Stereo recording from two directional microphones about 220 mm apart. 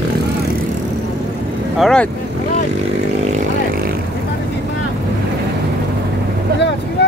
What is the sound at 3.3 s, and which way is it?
Vehicle, 40° right (ahead or behind).